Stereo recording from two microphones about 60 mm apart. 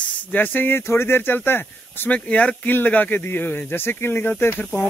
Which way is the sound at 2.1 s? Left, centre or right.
Left.